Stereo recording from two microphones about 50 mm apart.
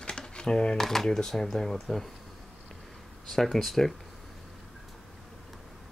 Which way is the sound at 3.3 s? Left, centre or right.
Centre.